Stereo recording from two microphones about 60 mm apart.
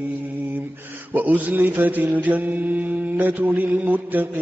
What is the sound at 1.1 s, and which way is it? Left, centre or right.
Mantra, right.